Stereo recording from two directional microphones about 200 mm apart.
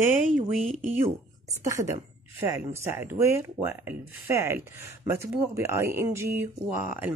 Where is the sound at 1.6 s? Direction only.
15° right (ahead or behind).